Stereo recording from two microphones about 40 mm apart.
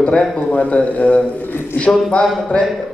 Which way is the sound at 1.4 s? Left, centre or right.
Left.